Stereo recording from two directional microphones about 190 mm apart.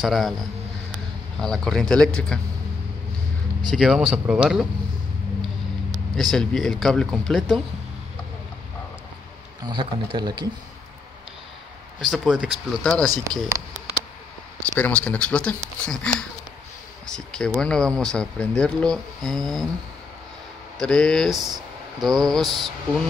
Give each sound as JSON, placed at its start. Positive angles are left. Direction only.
{"t": 0.0, "sound": "speech", "side_deg": 0}
{"t": 1.4, "sound": "speech", "side_deg": 5}
{"t": 3.7, "sound": "speech", "side_deg": -5}
{"t": 6.3, "sound": "speech", "side_deg": 0}
{"t": 9.7, "sound": "speech", "side_deg": -25}
{"t": 12.1, "sound": "speech", "side_deg": -5}
{"t": 13.1, "sound": "speech", "side_deg": -20}
{"t": 14.6, "sound": "speech", "side_deg": 5}
{"t": 20.8, "sound": "speech", "side_deg": 5}